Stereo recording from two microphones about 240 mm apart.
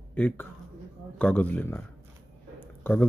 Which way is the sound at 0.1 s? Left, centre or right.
Centre.